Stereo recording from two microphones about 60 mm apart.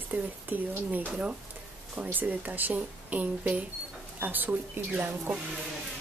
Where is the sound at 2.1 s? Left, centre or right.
Right.